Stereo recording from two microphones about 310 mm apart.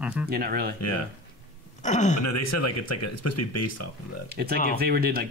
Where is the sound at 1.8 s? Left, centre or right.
Left.